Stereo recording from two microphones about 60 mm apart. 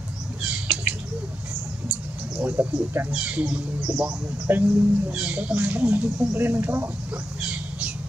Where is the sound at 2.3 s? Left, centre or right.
Right.